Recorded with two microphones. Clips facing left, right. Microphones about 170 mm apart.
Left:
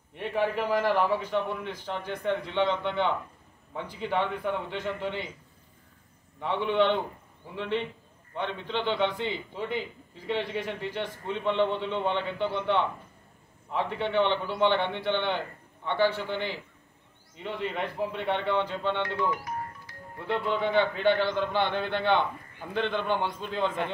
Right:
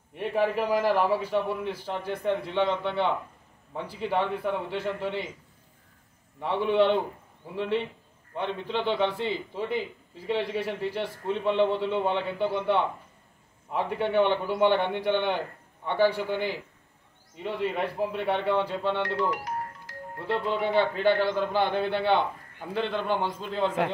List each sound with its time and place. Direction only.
0.1 s a man's voice: 5° right (ahead or behind)
6.4 s a man's voice: 5° right (ahead or behind)
19.3 s music: 75° right (ahead or behind)
20.2 s a man's voice: centre (ahead or behind)